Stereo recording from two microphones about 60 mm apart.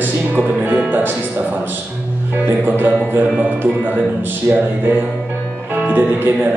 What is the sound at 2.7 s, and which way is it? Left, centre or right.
Speech, right.